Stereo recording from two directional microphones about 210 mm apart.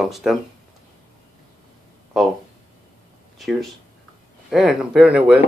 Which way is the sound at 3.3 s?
Centre (ahead or behind).